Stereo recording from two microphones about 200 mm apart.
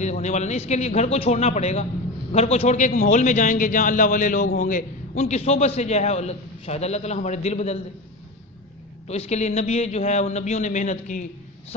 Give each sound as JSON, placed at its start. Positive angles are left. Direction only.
{"t": 0.0, "sound": "a man's voice", "side_deg": 35}
{"t": 9.0, "sound": "a man's voice", "side_deg": 30}